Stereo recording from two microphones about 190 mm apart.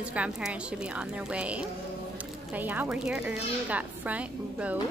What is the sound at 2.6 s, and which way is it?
Speech, 10° right (ahead or behind).